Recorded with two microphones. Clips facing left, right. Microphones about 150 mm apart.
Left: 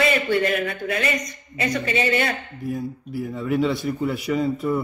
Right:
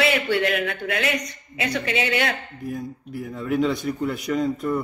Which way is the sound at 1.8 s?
75° right (ahead or behind).